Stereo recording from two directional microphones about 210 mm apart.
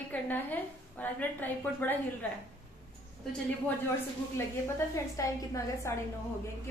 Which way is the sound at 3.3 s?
5° left (ahead or behind).